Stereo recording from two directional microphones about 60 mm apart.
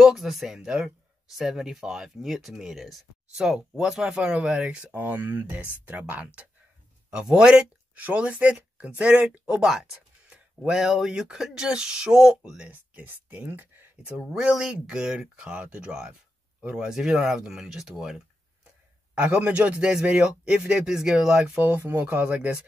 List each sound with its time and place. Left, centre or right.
0.0 s a man's voice: centre
4.9 s speech: right
5.6 s speech: right
9.6 s a man's voice: centre
10.3 s a sound: centre
10.8 s a man's voice: centre
13.0 s speech: right
14.1 s a man's voice: centre
19.1 s a man's voice: right
21.5 s speech: right